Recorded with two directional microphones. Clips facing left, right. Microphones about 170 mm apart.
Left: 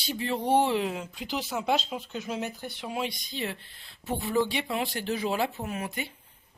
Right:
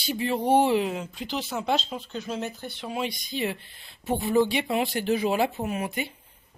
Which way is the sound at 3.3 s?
10° right (ahead or behind).